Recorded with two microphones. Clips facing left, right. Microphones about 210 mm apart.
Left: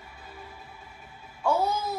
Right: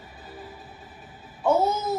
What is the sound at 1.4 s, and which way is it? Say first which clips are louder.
Speech: right 4 dB; 20° right (ahead or behind).